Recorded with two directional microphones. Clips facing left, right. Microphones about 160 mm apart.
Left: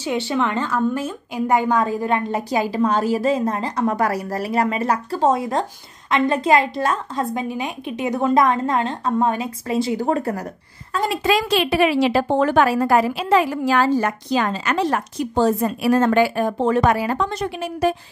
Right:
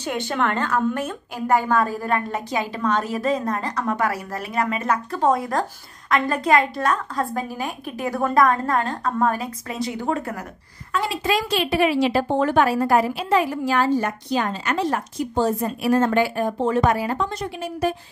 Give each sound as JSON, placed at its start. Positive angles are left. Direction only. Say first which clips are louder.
{"t": 0.4, "sound": "a woman's voice", "louder": "right 1 dB", "side_deg": 15}
{"t": 2.5, "sound": "a woman's voice", "louder": "left 4 dB", "side_deg": 35}
{"t": 11.2, "sound": "a woman's voice", "louder": "left 4 dB", "side_deg": 90}